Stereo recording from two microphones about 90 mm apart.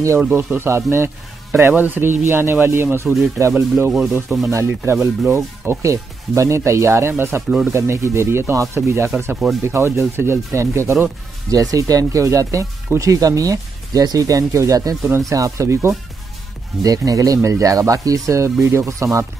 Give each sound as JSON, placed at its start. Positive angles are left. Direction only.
{"t": 0.2, "sound": "speech", "side_deg": -20}